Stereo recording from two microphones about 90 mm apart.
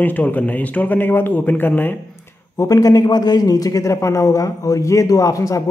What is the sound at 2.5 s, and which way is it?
A man's voice, 35° left (ahead or behind).